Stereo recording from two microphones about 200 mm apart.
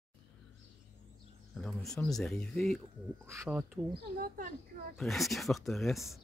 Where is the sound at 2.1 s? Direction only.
5° left (ahead or behind).